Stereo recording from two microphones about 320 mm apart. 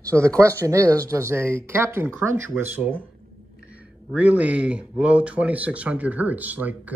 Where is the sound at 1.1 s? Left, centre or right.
Centre.